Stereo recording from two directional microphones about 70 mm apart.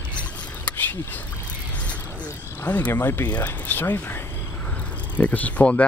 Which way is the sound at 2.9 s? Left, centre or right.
Left.